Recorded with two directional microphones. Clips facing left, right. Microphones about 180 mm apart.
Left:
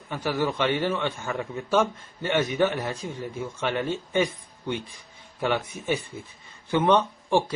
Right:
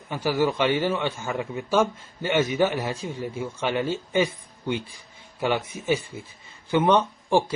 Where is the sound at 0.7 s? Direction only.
10° right (ahead or behind).